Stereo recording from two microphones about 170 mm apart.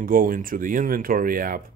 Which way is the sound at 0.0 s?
55° right (ahead or behind).